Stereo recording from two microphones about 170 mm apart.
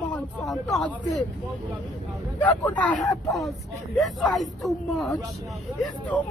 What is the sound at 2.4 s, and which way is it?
Speech, 10° left (ahead or behind).